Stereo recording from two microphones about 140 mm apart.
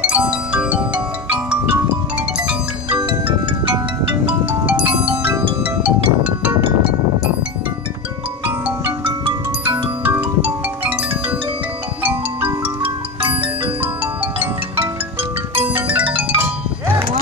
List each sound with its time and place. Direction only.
0.0 s marimba: 10° right (ahead or behind)
4.0 s marimba: 10° right (ahead or behind)
5.6 s music: 10° right (ahead or behind)
8.5 s marimba: 10° right (ahead or behind)
9.0 s marimba: 35° right (ahead or behind)
10.0 s marimba: 10° right (ahead or behind)
15.5 s music: 10° right (ahead or behind)